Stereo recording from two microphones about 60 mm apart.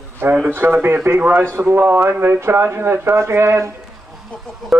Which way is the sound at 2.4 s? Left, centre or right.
Right.